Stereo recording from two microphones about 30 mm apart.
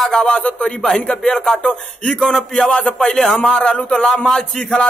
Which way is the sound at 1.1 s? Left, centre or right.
Left.